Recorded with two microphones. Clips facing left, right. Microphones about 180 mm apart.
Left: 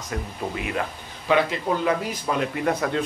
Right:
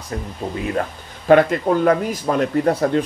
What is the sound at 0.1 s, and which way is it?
Speech, 35° right (ahead or behind).